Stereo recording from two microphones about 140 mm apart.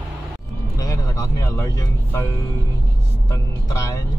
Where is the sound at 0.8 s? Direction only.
25° left (ahead or behind).